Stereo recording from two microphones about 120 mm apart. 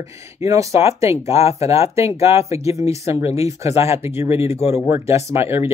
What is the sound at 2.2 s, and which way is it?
Speech, 60° left (ahead or behind).